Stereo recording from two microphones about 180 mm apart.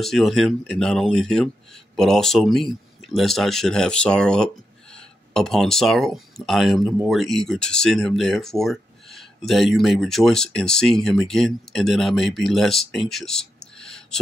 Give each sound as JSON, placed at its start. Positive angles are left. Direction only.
{"t": 0.0, "sound": "speech", "side_deg": 0}